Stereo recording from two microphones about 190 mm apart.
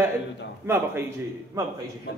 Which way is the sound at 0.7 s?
15° right (ahead or behind).